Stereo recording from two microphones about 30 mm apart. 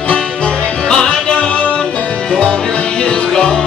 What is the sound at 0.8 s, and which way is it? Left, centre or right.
Music, left.